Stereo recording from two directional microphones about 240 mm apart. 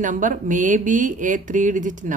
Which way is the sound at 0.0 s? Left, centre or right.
Right.